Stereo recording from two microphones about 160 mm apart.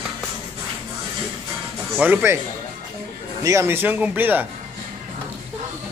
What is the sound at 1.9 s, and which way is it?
Speech, 10° right (ahead or behind).